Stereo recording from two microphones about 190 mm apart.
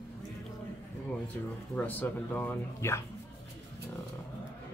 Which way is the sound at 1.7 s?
10° left (ahead or behind).